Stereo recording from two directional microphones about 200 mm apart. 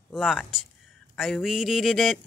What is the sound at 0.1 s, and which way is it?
Speech, centre (ahead or behind).